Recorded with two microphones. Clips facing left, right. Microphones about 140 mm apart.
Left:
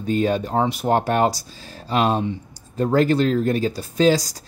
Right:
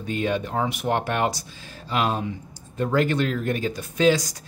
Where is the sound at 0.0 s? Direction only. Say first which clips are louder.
Left 5 dB; 35° left (ahead or behind).